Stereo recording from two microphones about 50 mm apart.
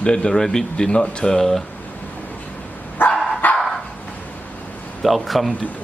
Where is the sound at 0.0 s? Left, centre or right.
Centre.